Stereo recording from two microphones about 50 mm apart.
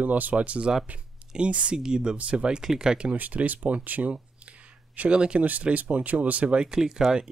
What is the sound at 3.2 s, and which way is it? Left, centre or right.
Speech, right.